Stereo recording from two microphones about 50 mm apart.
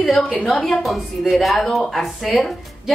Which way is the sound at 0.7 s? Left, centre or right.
Centre.